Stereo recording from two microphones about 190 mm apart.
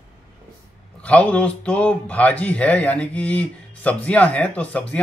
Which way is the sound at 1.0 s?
5° left (ahead or behind).